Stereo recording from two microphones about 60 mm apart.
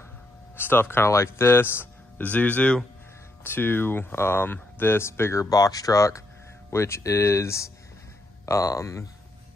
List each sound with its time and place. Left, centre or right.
0.6 s speech: left
2.2 s speech: left
3.4 s speech: left
5.4 s speech: left
6.7 s speech: left